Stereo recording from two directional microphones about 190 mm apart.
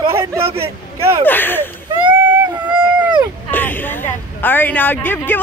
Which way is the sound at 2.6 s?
5° right (ahead or behind).